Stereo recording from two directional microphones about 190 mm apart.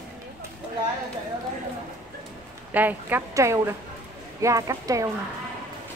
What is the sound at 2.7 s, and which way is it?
A woman's voice, 10° right (ahead or behind).